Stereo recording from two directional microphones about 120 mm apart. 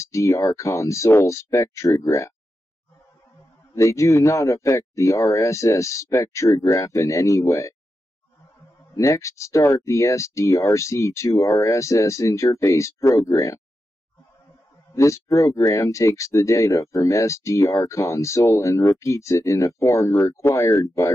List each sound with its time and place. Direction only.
0.0 s speech: 25° left (ahead or behind)
3.7 s speech: 25° left (ahead or behind)
8.9 s speech: 25° left (ahead or behind)
15.0 s speech: 25° left (ahead or behind)